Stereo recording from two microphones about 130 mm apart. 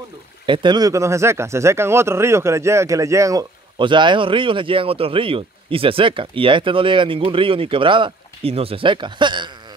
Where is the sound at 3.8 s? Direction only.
40° right (ahead or behind).